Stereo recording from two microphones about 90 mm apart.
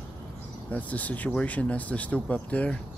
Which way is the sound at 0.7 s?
15° left (ahead or behind).